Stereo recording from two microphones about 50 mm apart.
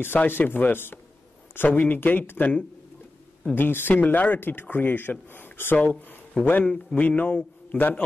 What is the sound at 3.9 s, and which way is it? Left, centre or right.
Speech, left.